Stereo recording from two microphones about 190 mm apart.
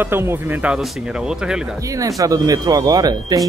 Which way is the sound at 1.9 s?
15° right (ahead or behind).